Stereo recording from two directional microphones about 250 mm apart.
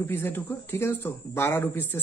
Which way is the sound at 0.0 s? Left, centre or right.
Centre.